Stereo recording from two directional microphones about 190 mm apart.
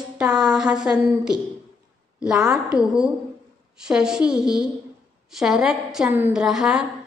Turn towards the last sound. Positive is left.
turn(degrees=-5)  # may be behind; listen again after turning